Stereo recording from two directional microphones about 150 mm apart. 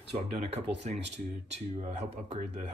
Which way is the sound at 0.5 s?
45° right (ahead or behind).